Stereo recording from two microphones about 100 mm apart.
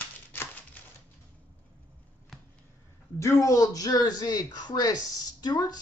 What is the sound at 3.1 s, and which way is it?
Speech, 30° left (ahead or behind).